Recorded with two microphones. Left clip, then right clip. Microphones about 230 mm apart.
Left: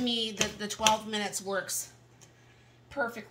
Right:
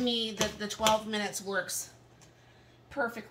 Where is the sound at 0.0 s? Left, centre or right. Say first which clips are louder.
Even; left.